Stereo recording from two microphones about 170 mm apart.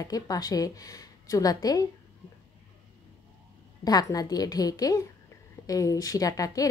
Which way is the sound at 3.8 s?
20° left (ahead or behind).